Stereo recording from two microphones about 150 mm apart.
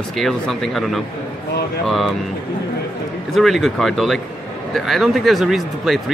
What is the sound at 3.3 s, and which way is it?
Speech, centre (ahead or behind).